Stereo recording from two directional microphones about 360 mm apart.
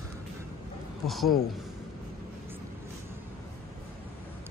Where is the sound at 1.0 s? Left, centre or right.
Centre.